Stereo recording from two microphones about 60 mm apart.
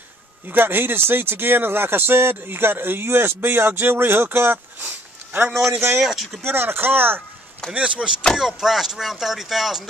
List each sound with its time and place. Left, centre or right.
0.5 s speech: right
5.7 s speech: right
5.9 s speech: centre
6.4 s speech: right
7.7 s speech: right
8.4 s speech: centre